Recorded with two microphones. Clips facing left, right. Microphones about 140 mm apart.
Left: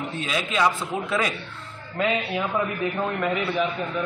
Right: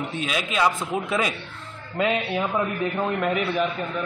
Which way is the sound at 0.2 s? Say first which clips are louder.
Even; 10° right (ahead or behind).